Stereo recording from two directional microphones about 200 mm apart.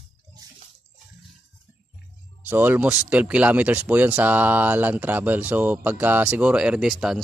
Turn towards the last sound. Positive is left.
turn(degrees=0)  # may be behind; listen again after turning